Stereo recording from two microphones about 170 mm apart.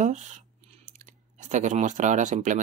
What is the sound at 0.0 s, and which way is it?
Speech, 45° right (ahead or behind).